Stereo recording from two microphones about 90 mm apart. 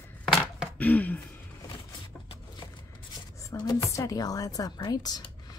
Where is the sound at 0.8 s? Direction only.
20° left (ahead or behind).